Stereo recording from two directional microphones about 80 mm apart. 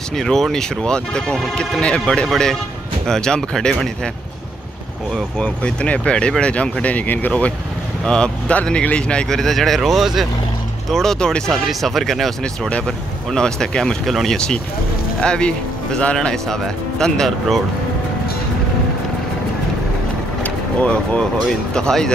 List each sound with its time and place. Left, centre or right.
0.2 s speech: centre
5.4 s speech: centre
20.4 s vehicle: centre
21.7 s speech: centre